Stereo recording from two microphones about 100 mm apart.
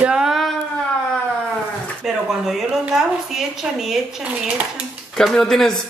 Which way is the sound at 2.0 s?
5° right (ahead or behind).